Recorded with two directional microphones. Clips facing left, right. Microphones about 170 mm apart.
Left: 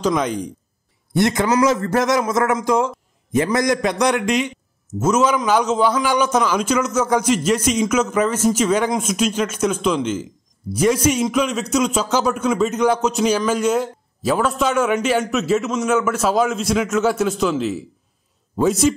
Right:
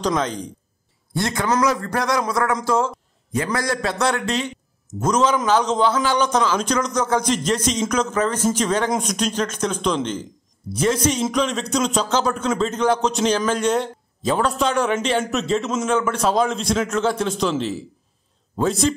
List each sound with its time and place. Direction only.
0.0 s a man's voice: 10° left (ahead or behind)